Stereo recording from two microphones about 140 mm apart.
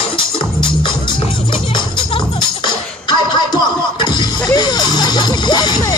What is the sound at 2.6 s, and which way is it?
Music, 30° left (ahead or behind).